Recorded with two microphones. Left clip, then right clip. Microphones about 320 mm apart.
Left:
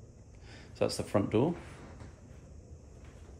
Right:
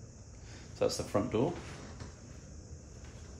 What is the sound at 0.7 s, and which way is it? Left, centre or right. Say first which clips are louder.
Speech: left 1 dB; left.